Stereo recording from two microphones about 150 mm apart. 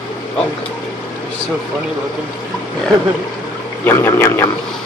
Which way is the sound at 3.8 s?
15° left (ahead or behind).